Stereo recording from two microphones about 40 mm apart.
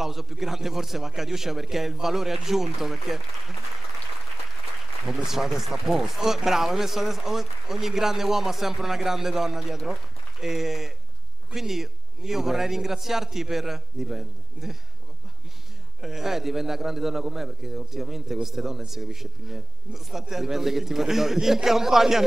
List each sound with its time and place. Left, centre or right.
0.0 s speech: centre
5.0 s speech: centre
16.0 s speech: centre